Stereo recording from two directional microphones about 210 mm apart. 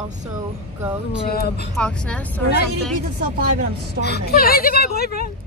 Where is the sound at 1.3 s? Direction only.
50° left (ahead or behind).